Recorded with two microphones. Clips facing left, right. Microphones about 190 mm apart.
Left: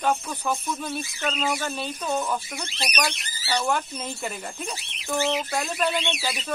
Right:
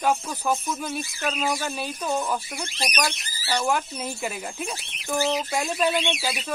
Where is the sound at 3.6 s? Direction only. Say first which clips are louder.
Right 1 dB; 5° right (ahead or behind).